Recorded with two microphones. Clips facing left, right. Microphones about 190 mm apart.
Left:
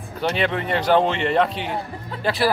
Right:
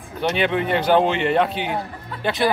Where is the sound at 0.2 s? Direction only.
Centre (ahead or behind).